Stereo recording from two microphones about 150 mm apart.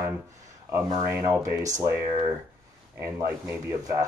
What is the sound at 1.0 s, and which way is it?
Speech, 20° right (ahead or behind).